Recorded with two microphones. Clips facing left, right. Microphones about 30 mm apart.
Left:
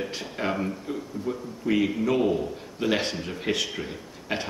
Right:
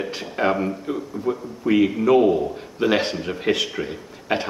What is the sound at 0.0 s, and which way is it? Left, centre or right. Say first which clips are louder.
Speech: right 7 dB; centre.